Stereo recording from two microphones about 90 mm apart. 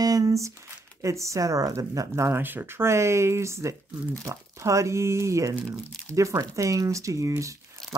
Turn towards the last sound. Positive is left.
turn(degrees=-35)  # may be behind; listen again after turning